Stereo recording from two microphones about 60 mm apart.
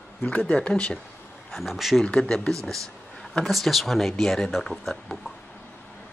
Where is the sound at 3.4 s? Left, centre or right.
Centre.